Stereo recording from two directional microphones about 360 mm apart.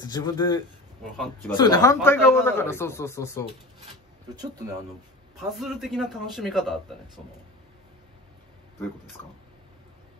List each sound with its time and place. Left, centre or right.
0.0 s a man's voice: centre
1.1 s speech: centre
5.4 s speech: centre